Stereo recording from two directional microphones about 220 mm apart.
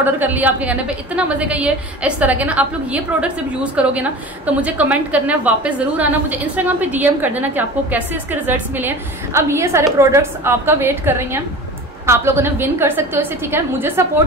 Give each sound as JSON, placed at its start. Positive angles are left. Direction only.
{"t": 0.0, "sound": "a woman's voice", "side_deg": -10}